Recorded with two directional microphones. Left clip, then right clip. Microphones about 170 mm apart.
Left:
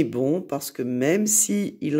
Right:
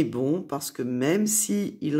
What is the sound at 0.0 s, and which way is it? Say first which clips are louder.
Speech: left 3 dB; 20° left (ahead or behind).